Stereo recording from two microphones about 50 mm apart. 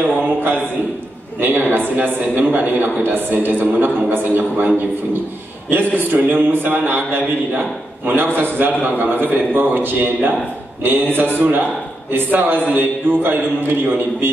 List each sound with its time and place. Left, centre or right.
0.2 s a man's voice: right